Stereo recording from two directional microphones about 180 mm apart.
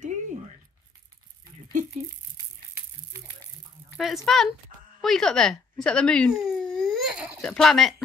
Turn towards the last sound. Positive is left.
turn(degrees=0)  # may be behind; listen again after turning